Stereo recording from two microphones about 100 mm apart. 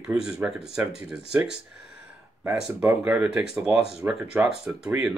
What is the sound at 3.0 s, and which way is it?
Speech, 10° right (ahead or behind).